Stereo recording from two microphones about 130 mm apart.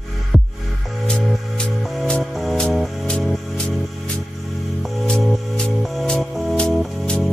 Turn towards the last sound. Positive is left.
turn(degrees=5)  # may be behind; listen again after turning